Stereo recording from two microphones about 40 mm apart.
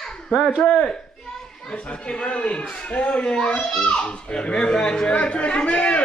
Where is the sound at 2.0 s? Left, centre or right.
Left.